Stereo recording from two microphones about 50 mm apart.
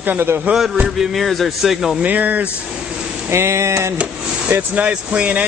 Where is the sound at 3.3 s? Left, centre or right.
Right.